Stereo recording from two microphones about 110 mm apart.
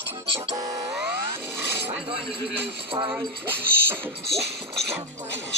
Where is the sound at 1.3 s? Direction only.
20° right (ahead or behind).